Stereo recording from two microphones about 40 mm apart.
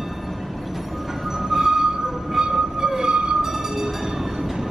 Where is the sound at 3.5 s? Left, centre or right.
Centre.